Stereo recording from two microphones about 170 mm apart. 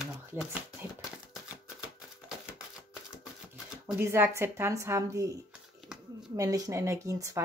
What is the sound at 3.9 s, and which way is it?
A woman's voice, 15° right (ahead or behind).